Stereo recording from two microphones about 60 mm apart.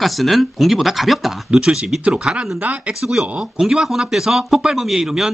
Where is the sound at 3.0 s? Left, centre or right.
Centre.